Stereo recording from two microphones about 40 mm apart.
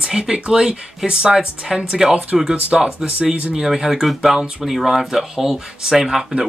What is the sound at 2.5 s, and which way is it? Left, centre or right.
Speech, right.